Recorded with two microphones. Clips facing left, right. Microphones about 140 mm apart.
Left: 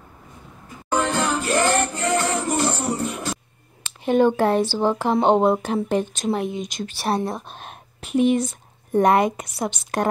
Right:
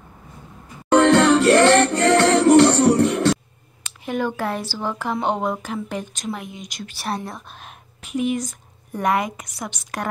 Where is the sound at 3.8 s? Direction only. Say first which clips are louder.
Left 7 dB; 25° left (ahead or behind).